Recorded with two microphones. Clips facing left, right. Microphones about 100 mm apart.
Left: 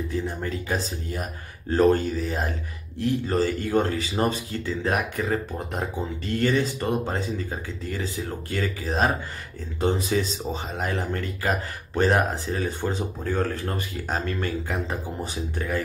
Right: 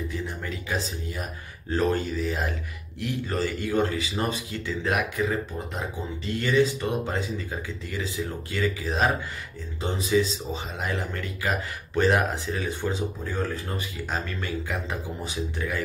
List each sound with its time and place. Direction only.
0.1 s speech: 40° left (ahead or behind)